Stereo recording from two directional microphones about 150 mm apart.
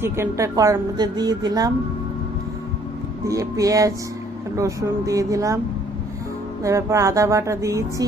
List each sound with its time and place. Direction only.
0.0 s a woman's voice: 15° right (ahead or behind)
3.3 s a woman's voice: 20° right (ahead or behind)
6.6 s a woman's voice: 20° right (ahead or behind)